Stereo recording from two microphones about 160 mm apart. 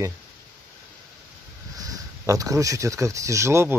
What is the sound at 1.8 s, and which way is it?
Speech, 20° right (ahead or behind).